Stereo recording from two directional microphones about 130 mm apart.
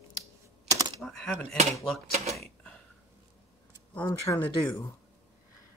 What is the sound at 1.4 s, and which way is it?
Speech, 60° right (ahead or behind).